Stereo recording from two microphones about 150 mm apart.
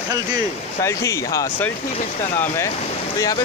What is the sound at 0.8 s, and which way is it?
Speech, 20° left (ahead or behind).